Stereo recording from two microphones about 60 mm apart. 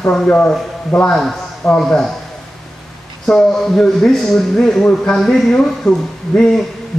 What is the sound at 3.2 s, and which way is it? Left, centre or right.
A man's voice, centre.